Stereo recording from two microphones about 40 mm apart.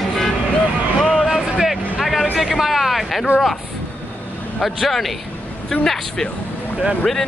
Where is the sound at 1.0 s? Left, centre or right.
Centre.